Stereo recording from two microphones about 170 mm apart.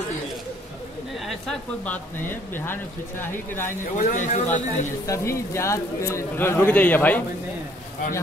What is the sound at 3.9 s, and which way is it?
Speech, 45° left (ahead or behind).